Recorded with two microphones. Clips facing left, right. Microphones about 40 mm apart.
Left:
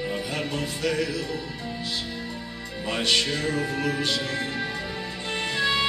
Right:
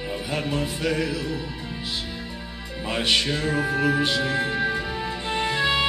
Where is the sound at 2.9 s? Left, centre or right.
Centre.